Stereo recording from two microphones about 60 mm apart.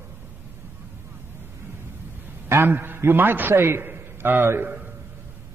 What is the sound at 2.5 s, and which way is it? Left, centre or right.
A man's voice, right.